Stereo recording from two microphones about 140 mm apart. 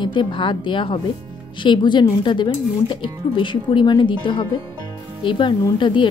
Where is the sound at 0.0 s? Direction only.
35° left (ahead or behind).